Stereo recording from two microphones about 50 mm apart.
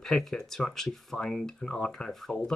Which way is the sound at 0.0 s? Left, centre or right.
Centre.